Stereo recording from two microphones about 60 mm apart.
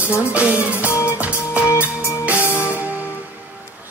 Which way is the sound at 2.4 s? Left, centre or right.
Left.